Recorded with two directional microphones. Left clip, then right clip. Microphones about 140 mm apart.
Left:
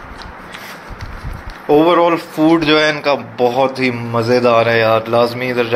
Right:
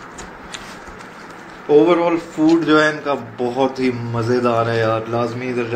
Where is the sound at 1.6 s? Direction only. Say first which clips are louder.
Left 3 dB; 50° left (ahead or behind).